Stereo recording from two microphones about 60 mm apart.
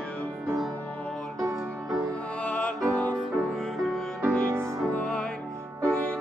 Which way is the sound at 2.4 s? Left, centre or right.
Left.